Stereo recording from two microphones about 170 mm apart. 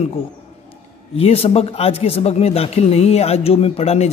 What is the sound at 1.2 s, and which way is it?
Speech, 35° left (ahead or behind).